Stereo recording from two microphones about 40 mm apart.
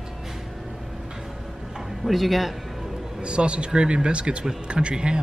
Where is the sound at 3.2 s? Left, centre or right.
Right.